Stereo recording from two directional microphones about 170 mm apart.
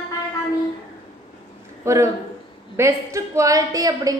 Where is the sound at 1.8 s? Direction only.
15° right (ahead or behind).